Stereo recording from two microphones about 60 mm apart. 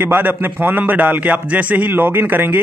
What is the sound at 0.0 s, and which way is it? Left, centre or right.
A man's voice, right.